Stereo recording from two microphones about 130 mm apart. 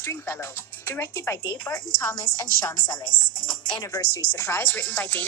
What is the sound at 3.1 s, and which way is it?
Speech, 90° left.